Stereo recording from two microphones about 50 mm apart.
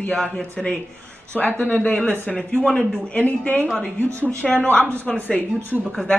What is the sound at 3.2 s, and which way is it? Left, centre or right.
Speech, left.